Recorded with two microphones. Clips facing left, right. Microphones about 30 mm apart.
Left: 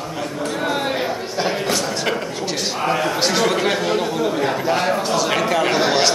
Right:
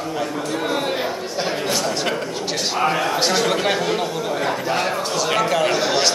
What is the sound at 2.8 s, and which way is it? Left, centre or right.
Speech, centre.